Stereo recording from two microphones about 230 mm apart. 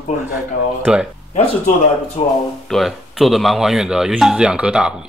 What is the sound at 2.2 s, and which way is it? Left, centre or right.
Speech, left.